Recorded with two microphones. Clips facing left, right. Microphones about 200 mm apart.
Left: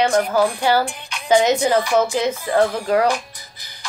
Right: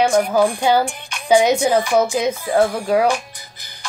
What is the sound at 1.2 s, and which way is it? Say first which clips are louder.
Speech: right 1 dB; 10° right (ahead or behind).